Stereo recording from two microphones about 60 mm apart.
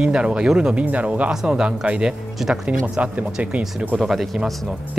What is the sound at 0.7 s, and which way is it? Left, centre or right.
Speech, right.